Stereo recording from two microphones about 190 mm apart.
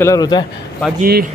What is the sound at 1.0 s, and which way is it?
Speech, 50° right (ahead or behind).